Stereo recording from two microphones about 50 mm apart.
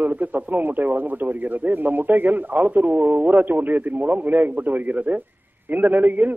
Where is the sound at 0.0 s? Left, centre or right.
Right.